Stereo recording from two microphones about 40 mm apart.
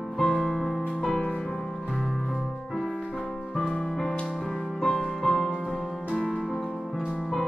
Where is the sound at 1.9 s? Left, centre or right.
Centre.